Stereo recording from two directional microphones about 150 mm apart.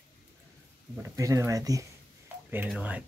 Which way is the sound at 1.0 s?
20° right (ahead or behind).